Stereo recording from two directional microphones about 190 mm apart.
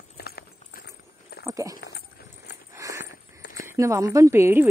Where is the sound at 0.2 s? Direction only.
55° left (ahead or behind).